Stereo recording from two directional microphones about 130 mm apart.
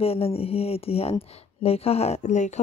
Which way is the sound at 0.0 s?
50° left (ahead or behind).